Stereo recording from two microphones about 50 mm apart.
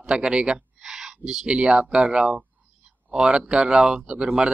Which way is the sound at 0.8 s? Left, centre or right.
Centre.